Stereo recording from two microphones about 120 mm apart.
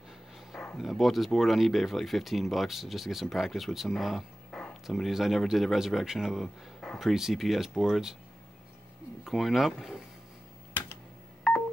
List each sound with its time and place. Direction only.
0.5 s speech: centre (ahead or behind)
9.2 s speech: centre (ahead or behind)